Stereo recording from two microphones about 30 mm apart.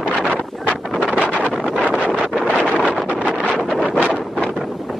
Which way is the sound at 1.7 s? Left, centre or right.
Left.